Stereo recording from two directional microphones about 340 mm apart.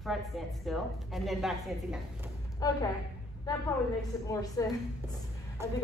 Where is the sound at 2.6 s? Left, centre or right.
Centre.